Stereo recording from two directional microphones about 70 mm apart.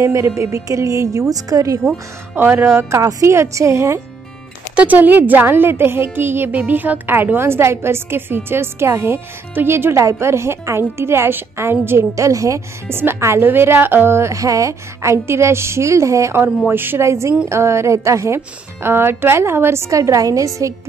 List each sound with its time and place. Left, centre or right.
0.0 s a woman's voice: right
1.9 s a woman's voice: right
2.9 s a woman's voice: right
4.7 s a woman's voice: right
12.2 s a woman's voice: right
12.8 s a woman's voice: right
16.6 s a woman's voice: right
17.0 s a woman's voice: right